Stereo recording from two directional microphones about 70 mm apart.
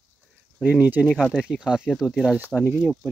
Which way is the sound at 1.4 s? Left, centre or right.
Centre.